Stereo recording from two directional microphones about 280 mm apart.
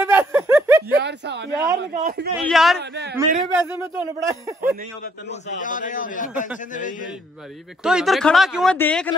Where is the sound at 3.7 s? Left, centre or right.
Centre.